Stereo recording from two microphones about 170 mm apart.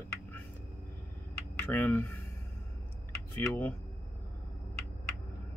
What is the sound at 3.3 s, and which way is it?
Speech, 10° left (ahead or behind).